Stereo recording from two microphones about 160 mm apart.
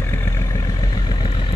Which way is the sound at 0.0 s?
15° left (ahead or behind).